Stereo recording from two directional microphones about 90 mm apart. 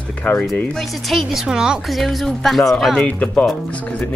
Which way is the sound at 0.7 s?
Centre (ahead or behind).